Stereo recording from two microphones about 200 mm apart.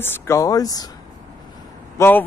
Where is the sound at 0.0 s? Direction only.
10° left (ahead or behind).